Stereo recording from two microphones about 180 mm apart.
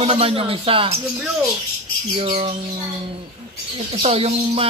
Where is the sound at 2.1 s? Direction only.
30° right (ahead or behind).